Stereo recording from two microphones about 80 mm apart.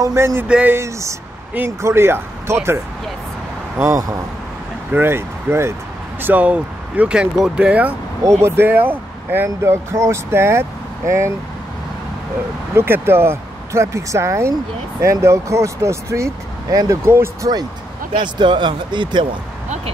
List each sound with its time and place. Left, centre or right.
0.0 s speech: right
4.9 s speech: right
6.2 s speech: centre
8.2 s speech: right
12.7 s speech: right
18.2 s speech: right